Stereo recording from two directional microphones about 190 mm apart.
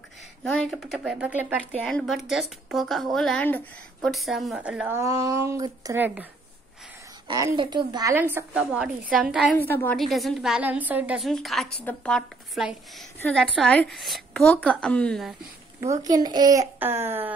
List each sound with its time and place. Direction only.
0.4 s speech: 5° left (ahead or behind)
1.7 s speech: 5° left (ahead or behind)
7.2 s a woman's voice: 20° right (ahead or behind)
8.1 s speech: 10° right (ahead or behind)
9.6 s speech: 10° left (ahead or behind)
15.9 s a woman's voice: 20° right (ahead or behind)